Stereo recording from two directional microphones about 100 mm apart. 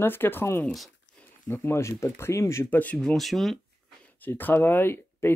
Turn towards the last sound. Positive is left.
turn(degrees=20)  # may be behind; listen again after turning